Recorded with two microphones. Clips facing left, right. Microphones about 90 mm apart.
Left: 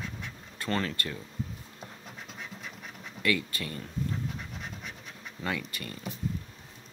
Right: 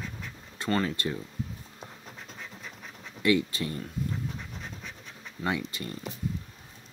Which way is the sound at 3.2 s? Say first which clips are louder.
Right 5 dB; 20° right (ahead or behind).